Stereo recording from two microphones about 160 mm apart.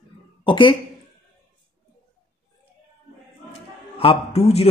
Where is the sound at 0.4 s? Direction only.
30° left (ahead or behind).